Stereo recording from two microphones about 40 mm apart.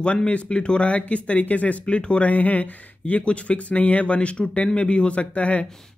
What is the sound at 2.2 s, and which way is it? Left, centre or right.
Speech, left.